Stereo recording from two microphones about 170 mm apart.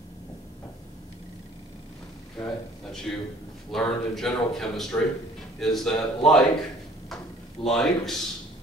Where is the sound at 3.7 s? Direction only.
5° left (ahead or behind).